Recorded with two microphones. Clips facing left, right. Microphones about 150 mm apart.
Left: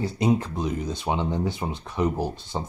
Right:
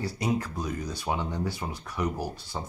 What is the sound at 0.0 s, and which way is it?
Speech, 25° left (ahead or behind).